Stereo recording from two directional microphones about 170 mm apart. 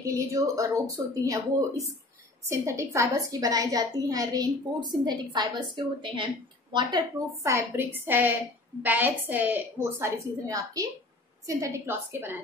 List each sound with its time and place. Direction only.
0.0 s a woman's voice: 20° right (ahead or behind)
2.4 s a woman's voice: 15° right (ahead or behind)
7.4 s a woman's voice: 15° right (ahead or behind)